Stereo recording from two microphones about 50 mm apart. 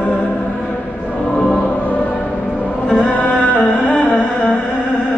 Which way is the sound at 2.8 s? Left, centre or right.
Centre.